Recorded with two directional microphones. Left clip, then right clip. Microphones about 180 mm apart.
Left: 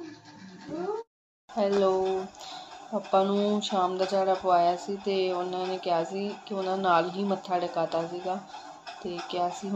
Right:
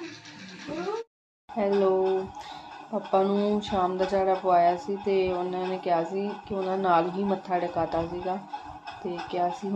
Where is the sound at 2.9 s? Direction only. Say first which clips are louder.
Even; 10° left (ahead or behind).